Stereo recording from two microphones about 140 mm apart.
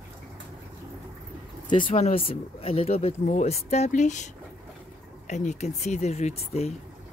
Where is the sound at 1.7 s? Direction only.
35° left (ahead or behind).